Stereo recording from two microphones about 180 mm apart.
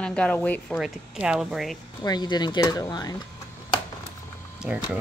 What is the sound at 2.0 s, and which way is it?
Speech, 25° left (ahead or behind).